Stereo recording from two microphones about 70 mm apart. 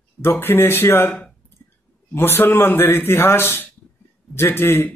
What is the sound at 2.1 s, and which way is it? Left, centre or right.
Speech, left.